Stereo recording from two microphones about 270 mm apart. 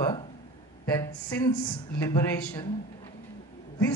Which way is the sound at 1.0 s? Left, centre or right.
Centre.